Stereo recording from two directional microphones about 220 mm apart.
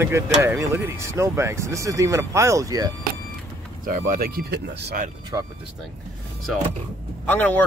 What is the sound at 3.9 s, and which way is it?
Speech, 40° right (ahead or behind).